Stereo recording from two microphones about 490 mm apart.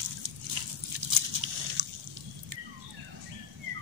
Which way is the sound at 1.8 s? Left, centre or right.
Right.